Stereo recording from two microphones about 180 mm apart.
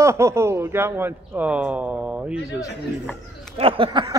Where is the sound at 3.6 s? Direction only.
30° right (ahead or behind).